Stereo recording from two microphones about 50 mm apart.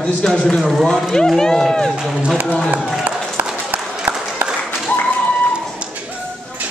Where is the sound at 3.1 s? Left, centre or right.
Right.